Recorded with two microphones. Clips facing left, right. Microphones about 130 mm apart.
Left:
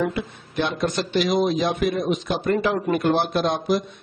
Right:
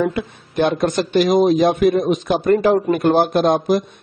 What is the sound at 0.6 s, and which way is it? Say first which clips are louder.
A man's voice: right 6 dB; 50° right (ahead or behind).